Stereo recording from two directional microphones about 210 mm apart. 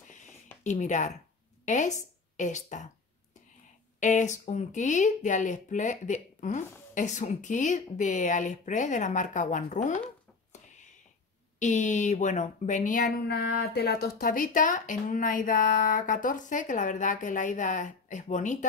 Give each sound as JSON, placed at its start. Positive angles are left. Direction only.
{"t": 0.7, "sound": "speech", "side_deg": 35}
{"t": 4.0, "sound": "speech", "side_deg": 35}
{"t": 10.5, "sound": "a sound", "side_deg": 35}
{"t": 11.6, "sound": "speech", "side_deg": 35}
{"t": 13.3, "sound": "speech", "side_deg": 50}